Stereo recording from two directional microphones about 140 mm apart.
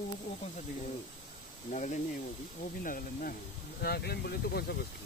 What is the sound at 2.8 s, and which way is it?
Speech, 80° left.